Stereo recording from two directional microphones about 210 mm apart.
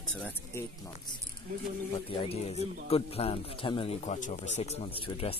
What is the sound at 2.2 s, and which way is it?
Speech, 30° left (ahead or behind).